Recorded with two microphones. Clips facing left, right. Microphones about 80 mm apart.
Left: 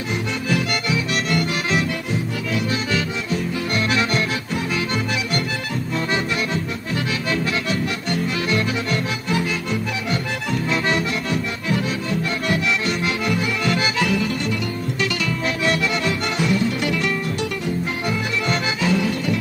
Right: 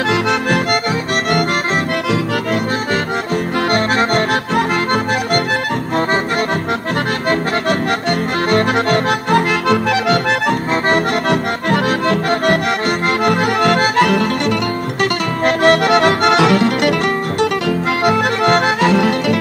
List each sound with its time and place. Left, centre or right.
0.1 s accordion: right
3.7 s accordion: right
8.1 s accordion: right
13.2 s music: right
15.4 s accordion: right
17.4 s music: right